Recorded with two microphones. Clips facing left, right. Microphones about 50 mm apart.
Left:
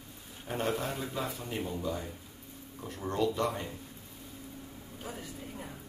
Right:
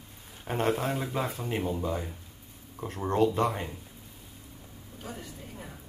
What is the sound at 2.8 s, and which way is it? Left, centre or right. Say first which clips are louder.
Speech: right 6 dB; right.